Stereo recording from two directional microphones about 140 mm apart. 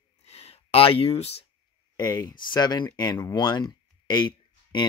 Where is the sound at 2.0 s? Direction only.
25° left (ahead or behind).